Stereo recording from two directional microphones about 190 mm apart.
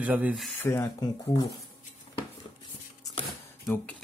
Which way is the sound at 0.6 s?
15° left (ahead or behind).